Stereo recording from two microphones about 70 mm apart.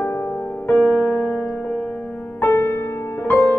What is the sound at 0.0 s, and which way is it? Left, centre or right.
Music, left.